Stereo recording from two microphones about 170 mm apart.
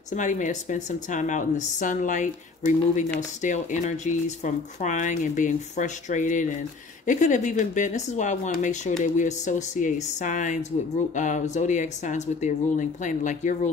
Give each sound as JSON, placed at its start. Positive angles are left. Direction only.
{"t": 0.1, "sound": "speech", "side_deg": 45}